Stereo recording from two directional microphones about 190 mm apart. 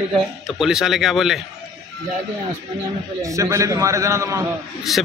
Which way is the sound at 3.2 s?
15° right (ahead or behind).